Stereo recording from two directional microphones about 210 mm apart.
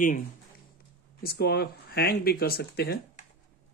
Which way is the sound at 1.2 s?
50° left (ahead or behind).